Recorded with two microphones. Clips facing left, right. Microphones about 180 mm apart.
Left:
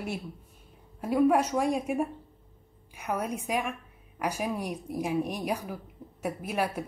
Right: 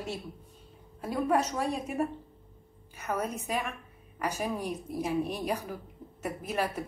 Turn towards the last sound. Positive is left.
turn(degrees=10)  # may be behind; listen again after turning